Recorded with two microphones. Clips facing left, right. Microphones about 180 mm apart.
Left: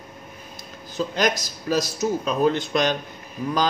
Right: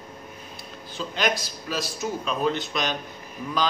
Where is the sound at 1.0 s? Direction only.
40° left (ahead or behind).